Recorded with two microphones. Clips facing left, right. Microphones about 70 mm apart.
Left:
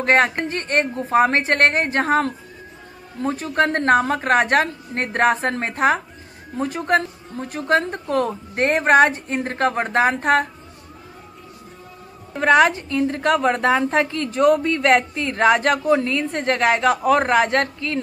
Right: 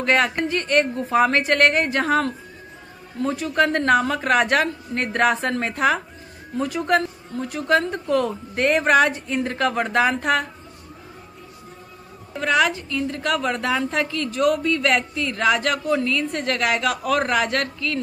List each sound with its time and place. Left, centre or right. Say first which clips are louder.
0.0 s a woman's voice: left 2 dB; left
12.4 s a woman's voice: left 5 dB; left